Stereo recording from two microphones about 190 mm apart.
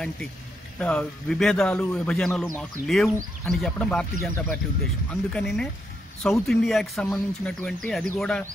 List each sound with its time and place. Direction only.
0.7 s speech: 5° left (ahead or behind)